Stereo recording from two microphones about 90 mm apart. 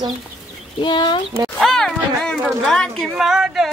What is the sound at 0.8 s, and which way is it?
Speech, 60° left (ahead or behind).